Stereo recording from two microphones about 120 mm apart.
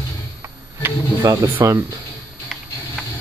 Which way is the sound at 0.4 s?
25° right (ahead or behind).